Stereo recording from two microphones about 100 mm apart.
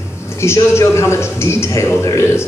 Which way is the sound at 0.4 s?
30° left (ahead or behind).